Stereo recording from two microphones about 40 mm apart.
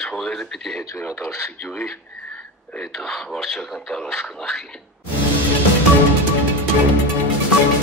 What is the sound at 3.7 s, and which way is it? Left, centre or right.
Speech, centre.